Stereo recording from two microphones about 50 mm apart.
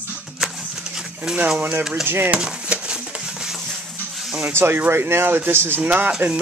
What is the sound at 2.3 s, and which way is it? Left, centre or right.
Stir, centre.